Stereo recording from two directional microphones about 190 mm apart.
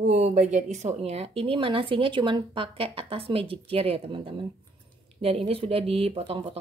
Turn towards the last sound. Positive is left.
turn(degrees=-25)  # may be behind; listen again after turning